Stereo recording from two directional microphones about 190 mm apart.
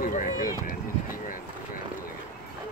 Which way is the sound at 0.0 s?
45° left (ahead or behind).